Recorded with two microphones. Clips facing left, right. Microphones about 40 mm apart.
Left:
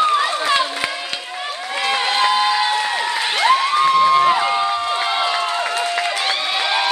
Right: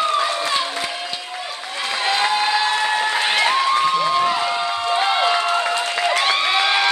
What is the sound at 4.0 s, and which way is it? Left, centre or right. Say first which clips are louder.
Crowd: left 4 dB; centre.